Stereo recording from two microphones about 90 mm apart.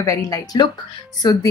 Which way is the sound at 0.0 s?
40° left (ahead or behind).